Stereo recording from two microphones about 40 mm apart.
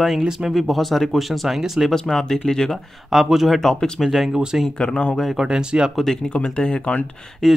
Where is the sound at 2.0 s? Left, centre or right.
Centre.